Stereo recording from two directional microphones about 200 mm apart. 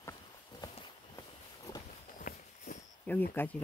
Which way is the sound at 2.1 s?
40° left (ahead or behind).